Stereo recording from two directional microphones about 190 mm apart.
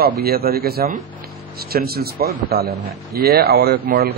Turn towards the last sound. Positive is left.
turn(degrees=-55)  # may be behind; listen again after turning